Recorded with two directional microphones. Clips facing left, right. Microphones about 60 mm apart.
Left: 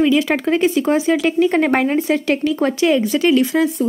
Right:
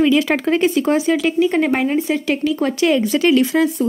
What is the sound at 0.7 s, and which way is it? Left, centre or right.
Speech, centre.